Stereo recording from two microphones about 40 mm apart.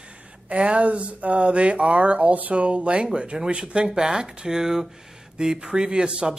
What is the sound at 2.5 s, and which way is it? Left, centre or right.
Speech, right.